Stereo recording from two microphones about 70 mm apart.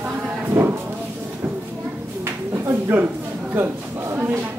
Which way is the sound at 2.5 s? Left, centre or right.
Right.